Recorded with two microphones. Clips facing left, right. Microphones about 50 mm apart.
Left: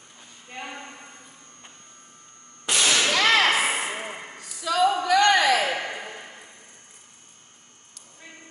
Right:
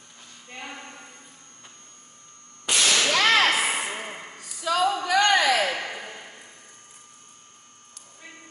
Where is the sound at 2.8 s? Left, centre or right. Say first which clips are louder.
Even; centre.